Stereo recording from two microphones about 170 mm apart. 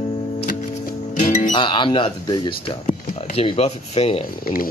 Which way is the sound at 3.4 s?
35° left (ahead or behind).